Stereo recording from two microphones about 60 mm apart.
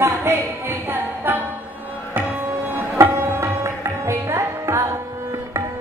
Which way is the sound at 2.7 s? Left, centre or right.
Right.